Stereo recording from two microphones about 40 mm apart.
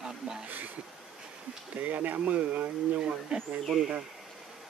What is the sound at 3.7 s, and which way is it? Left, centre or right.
Speech, centre.